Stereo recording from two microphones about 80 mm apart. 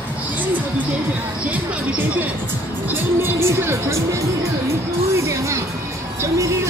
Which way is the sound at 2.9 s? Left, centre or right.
Right.